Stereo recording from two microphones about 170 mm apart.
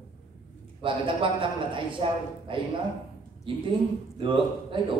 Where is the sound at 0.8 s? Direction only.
30° right (ahead or behind).